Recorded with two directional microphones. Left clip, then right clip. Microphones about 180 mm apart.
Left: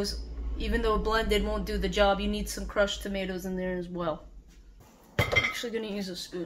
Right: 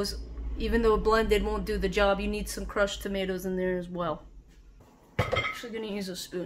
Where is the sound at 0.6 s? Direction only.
20° right (ahead or behind).